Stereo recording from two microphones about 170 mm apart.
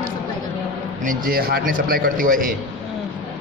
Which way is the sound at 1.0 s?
55° right (ahead or behind).